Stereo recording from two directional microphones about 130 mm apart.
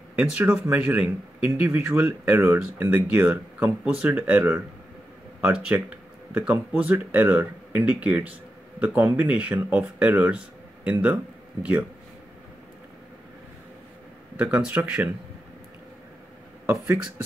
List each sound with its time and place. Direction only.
0.1 s speech: 10° right (ahead or behind)
14.3 s speech: 10° right (ahead or behind)
16.6 s speech: 15° right (ahead or behind)